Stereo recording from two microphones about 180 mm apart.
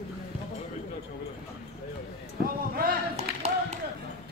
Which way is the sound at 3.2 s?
35° right (ahead or behind).